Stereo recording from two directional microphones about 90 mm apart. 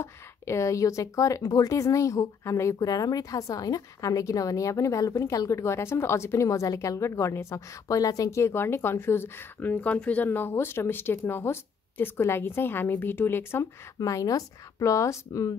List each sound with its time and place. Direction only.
0.0 s speech: 30° left (ahead or behind)
13.9 s speech: 40° left (ahead or behind)